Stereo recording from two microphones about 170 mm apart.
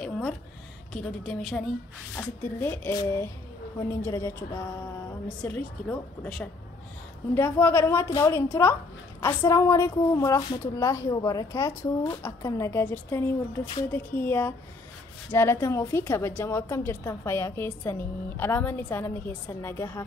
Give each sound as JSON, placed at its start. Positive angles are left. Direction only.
{"t": 1.2, "sound": "a woman's voice", "side_deg": 0}
{"t": 2.1, "sound": "a woman's voice", "side_deg": 10}